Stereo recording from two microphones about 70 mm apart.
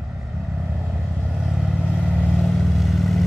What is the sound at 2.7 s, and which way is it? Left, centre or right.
Vehicle, centre.